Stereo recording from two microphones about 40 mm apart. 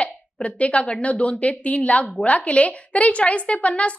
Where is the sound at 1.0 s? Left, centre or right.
Left.